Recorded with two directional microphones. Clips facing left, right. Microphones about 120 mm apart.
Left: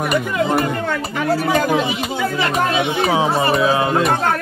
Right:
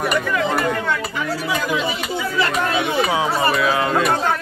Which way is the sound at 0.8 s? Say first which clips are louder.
Left 3 dB; 45° left (ahead or behind).